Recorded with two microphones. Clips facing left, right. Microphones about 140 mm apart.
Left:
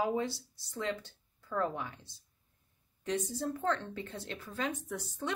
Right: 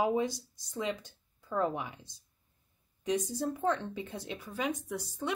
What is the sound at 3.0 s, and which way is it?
A woman's voice, 15° right (ahead or behind).